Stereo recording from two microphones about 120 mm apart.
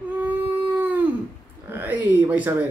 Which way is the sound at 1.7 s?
15° right (ahead or behind).